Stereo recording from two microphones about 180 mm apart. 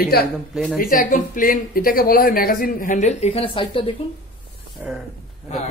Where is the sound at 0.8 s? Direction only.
50° left (ahead or behind); by 3.9 s 30° left (ahead or behind).